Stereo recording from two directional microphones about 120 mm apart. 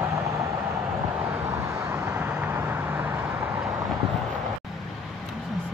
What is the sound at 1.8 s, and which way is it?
Vehicle, 15° right (ahead or behind).